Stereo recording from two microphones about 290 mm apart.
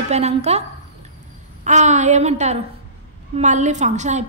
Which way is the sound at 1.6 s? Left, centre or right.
Right.